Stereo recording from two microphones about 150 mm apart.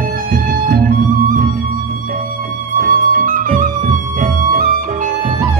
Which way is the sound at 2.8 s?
70° right (ahead or behind).